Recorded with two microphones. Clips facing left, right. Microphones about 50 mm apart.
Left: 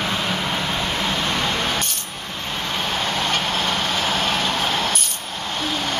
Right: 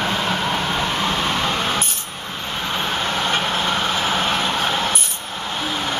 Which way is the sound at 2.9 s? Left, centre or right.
Right.